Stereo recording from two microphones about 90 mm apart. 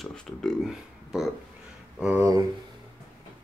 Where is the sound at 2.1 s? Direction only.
35° right (ahead or behind).